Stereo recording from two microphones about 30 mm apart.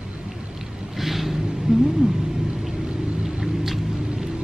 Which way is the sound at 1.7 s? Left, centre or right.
Right.